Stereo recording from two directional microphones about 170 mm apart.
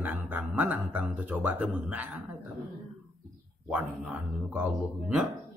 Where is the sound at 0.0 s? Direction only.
10° right (ahead or behind).